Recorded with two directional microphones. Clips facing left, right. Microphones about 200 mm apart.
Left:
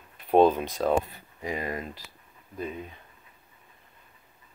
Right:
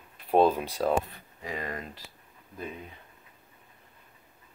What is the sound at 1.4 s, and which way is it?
Speech, 15° left (ahead or behind).